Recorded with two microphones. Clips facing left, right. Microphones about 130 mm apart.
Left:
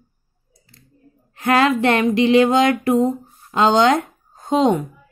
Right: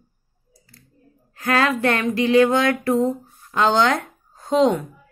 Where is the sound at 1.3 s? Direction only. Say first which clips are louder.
Left 4 dB; 20° left (ahead or behind).